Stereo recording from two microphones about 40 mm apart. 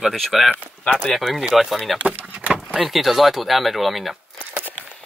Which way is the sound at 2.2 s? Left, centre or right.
Right.